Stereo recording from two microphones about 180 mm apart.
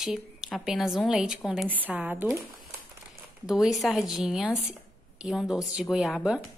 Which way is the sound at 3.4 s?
Centre (ahead or behind).